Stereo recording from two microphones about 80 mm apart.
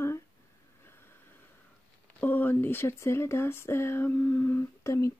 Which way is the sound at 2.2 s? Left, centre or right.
Left.